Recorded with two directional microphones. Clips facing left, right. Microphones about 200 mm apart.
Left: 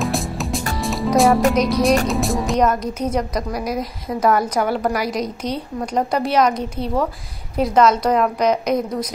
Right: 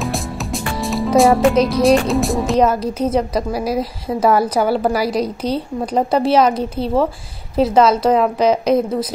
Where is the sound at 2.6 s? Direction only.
30° right (ahead or behind).